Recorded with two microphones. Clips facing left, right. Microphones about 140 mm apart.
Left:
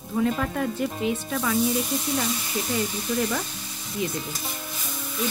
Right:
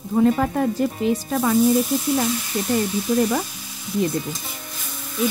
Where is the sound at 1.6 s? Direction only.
Centre (ahead or behind).